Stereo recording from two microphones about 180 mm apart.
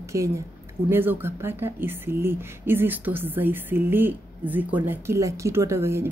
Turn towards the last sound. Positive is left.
turn(degrees=-15)  # may be behind; listen again after turning